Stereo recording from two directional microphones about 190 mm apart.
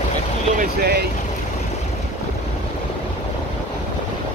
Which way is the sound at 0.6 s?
55° right (ahead or behind).